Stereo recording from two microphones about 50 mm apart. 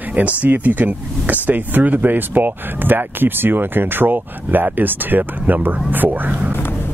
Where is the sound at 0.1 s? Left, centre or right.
Right.